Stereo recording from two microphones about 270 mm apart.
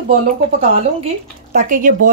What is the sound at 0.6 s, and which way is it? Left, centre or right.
Speech, right.